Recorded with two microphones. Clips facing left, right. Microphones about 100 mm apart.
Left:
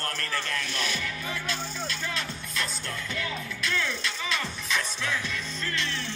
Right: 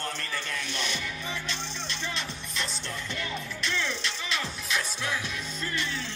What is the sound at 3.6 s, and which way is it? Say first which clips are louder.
Music: left 2 dB; centre (ahead or behind).